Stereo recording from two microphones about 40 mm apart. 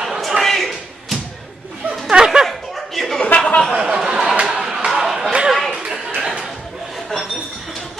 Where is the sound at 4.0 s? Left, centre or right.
Centre.